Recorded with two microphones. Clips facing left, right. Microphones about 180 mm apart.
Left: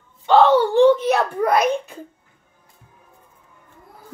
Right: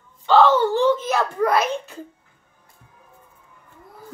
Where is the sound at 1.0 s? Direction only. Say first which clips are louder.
Left 2 dB; 15° left (ahead or behind).